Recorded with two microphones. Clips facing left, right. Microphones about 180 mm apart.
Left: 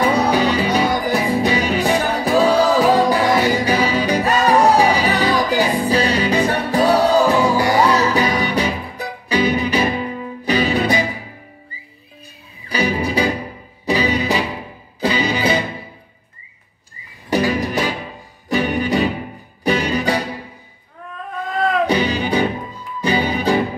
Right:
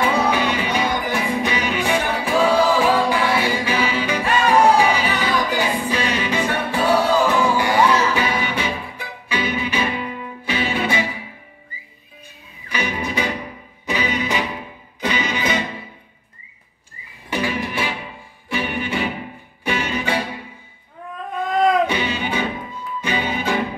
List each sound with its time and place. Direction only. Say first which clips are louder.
0.0 s music: left 3 dB; 35° left (ahead or behind)
12.6 s music: left 5 dB; 35° left (ahead or behind)
17.3 s music: left 6 dB; 40° left (ahead or behind)
21.5 s music: right 2 dB; 15° right (ahead or behind)
21.8 s music: left 5 dB; 35° left (ahead or behind)